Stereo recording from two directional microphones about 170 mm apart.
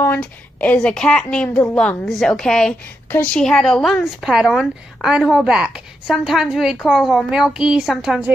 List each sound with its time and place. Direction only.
0.0 s a woman's voice: 10° left (ahead or behind)